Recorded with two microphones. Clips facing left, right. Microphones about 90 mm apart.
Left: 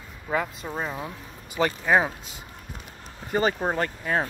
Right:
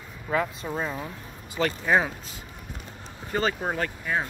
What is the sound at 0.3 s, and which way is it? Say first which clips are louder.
Speech: right 1 dB; 5° left (ahead or behind).